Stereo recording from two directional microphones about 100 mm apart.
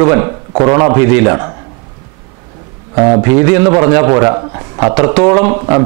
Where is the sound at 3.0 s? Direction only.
35° right (ahead or behind).